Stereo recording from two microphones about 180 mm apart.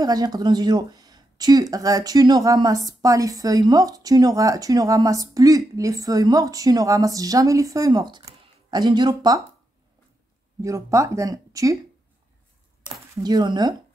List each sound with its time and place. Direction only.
0.0 s speech: 20° right (ahead or behind)
10.6 s speech: 15° right (ahead or behind)
13.1 s speech: 20° right (ahead or behind)